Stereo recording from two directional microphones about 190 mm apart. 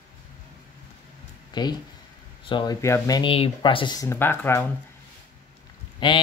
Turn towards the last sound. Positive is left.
turn(degrees=25)  # may be behind; listen again after turning